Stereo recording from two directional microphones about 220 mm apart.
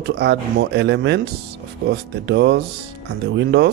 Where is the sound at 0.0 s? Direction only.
50° right (ahead or behind).